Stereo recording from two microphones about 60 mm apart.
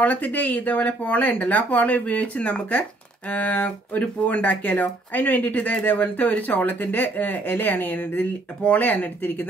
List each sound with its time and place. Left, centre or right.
0.0 s speech: left